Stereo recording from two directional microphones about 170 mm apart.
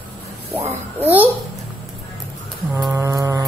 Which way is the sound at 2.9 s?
15° right (ahead or behind).